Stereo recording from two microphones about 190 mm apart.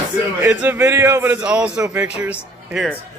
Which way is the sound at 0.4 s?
10° right (ahead or behind).